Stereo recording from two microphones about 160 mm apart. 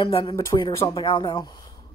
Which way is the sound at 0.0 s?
35° left (ahead or behind).